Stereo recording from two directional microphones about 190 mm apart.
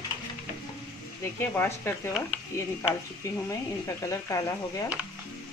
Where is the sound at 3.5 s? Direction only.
15° left (ahead or behind).